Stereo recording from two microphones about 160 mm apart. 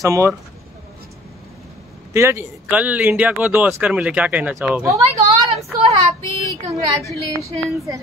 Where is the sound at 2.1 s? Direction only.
15° right (ahead or behind).